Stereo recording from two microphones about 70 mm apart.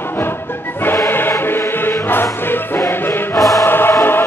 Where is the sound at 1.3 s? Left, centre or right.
Left.